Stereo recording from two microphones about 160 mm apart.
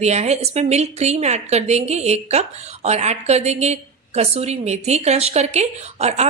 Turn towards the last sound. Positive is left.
turn(degrees=-45)  # may be behind; listen again after turning